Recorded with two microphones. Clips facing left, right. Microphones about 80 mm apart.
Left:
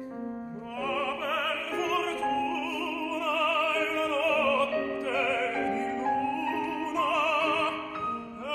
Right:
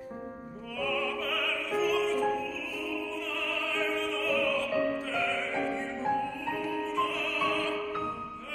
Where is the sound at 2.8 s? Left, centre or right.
Left.